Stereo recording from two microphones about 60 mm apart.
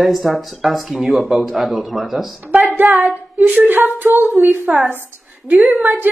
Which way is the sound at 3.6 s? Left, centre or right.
Right.